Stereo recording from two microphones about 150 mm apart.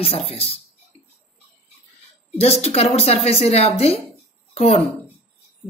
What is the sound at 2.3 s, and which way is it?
A woman's voice, 45° left (ahead or behind).